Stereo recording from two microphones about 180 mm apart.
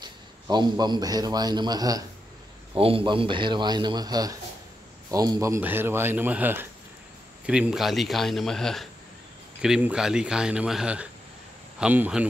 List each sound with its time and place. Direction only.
0.0 s a man's voice: 25° right (ahead or behind); by 12.3 s 10° right (ahead or behind)